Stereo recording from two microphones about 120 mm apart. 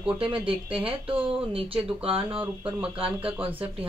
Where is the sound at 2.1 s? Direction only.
10° right (ahead or behind).